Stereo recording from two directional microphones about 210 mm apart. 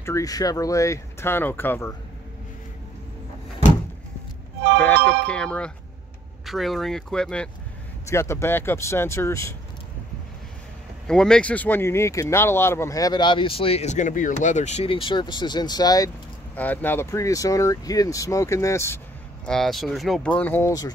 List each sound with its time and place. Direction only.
0.0 s speech: 15° left (ahead or behind)
4.7 s speech: 5° left (ahead or behind)
11.1 s speech: 5° left (ahead or behind)
19.4 s speech: centre (ahead or behind)